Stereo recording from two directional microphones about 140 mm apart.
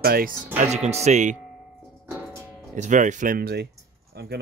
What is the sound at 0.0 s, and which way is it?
Speech, 90° right.